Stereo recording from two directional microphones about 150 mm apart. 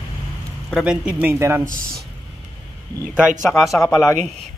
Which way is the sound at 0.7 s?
5° right (ahead or behind).